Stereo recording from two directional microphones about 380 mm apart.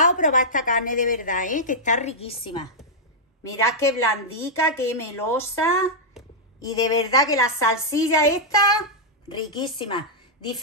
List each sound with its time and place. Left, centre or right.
0.0 s a woman's voice: centre
3.6 s a woman's voice: centre
9.8 s a woman's voice: centre